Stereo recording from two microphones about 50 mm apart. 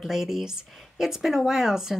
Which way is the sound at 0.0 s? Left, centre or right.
Centre.